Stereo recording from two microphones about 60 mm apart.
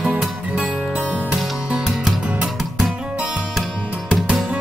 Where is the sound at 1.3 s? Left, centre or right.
Centre.